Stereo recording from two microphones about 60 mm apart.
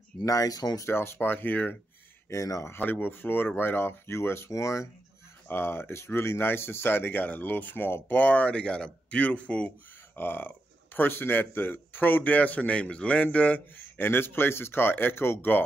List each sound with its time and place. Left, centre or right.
0.2 s speech: left
0.8 s speech: left
2.2 s speech: left
2.7 s speech: left
5.5 s speech: left
10.1 s speech: left